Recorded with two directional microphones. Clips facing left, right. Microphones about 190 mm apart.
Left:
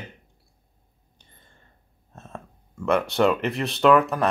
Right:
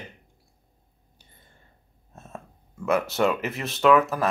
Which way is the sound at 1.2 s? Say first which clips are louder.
Left 1 dB; 10° right (ahead or behind).